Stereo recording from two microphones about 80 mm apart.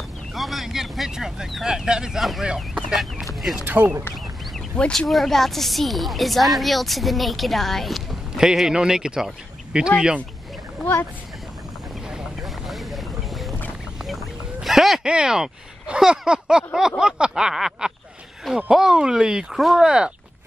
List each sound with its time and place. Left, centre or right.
0.3 s a woman's voice: centre
3.6 s speech: right
4.7 s a woman's voice: centre
12.1 s boat: centre
14.0 s quack: centre
17.0 s a sound: centre
18.7 s speech: centre